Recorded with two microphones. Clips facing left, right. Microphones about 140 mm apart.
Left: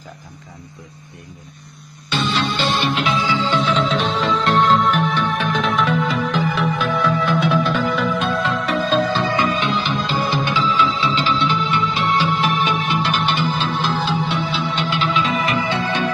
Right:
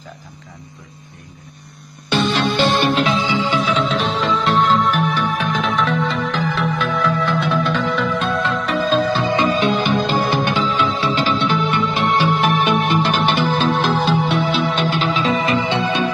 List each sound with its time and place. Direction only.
2.0 s music: 50° right (ahead or behind)
3.2 s music: 20° right (ahead or behind)
3.6 s music: centre (ahead or behind)
9.2 s music: 25° right (ahead or behind)
9.5 s music: 45° right (ahead or behind); by 16.1 s 20° right (ahead or behind)